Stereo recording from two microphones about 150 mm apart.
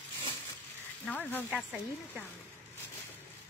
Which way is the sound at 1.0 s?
10° left (ahead or behind).